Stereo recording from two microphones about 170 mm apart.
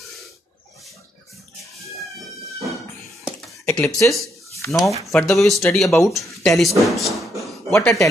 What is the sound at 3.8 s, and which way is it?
Speech, 20° left (ahead or behind).